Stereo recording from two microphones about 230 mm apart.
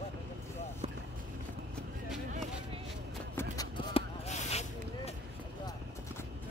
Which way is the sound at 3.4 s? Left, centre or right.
Centre.